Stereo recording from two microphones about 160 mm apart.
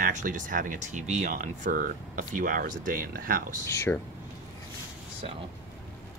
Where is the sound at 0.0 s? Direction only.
50° right (ahead or behind).